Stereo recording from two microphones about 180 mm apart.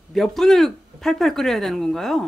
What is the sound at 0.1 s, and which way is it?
Speech, centre (ahead or behind).